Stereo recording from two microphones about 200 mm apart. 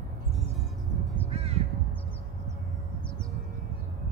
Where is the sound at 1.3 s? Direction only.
30° right (ahead or behind).